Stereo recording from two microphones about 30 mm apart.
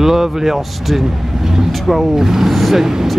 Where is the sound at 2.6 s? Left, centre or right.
Centre.